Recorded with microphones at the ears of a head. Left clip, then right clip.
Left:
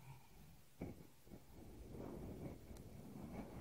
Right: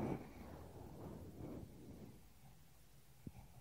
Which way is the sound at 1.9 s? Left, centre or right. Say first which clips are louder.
Left 9 dB; left.